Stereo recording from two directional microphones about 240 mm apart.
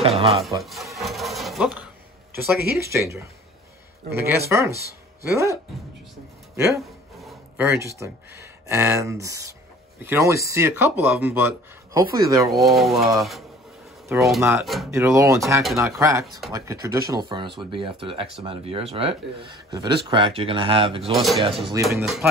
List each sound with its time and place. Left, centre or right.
0.0 s music: right
0.6 s filing: centre
2.3 s speech: centre
6.8 s a sound: centre
7.6 s speech: centre
12.4 s speech: centre
14.9 s speech: centre
16.3 s speech: centre
16.5 s speech: centre
21.0 s speech: centre
21.5 s speech: right
22.0 s speech: centre